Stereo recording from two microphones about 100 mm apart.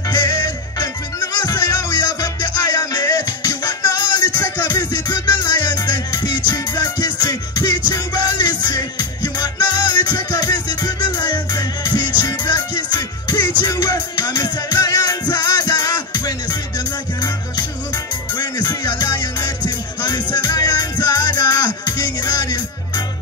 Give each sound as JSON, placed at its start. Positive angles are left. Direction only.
{"t": 0.1, "sound": "music", "side_deg": 45}